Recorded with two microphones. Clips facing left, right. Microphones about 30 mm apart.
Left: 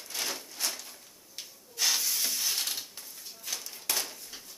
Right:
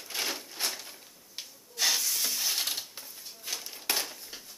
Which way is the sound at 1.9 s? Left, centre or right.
Centre.